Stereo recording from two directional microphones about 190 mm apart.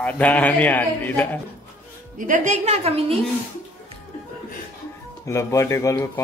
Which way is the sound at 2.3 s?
40° right (ahead or behind).